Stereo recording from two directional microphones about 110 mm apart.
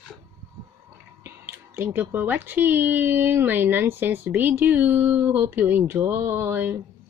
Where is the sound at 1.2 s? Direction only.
20° right (ahead or behind).